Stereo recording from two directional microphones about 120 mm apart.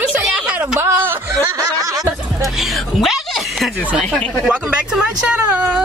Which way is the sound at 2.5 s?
Centre (ahead or behind).